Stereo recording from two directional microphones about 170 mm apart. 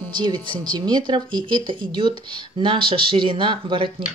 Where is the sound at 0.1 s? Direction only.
25° right (ahead or behind).